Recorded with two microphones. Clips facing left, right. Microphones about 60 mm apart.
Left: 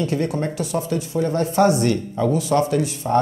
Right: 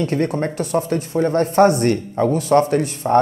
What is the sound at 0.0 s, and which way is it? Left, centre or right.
Speech, right.